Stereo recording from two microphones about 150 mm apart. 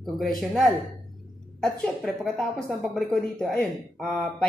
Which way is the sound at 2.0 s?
5° left (ahead or behind).